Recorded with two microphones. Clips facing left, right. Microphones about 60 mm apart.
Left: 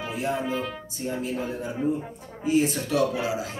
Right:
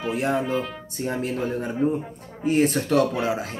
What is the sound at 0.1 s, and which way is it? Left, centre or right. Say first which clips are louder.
Speech: right 4 dB; right.